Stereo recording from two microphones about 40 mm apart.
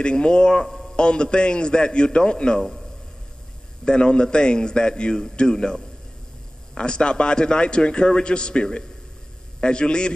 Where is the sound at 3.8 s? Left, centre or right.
Left.